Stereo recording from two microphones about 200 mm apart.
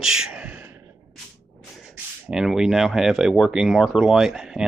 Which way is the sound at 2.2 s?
Centre (ahead or behind).